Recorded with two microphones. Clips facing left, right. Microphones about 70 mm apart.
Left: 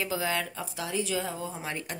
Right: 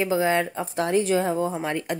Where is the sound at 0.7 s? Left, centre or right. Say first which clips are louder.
Right 10 dB; right.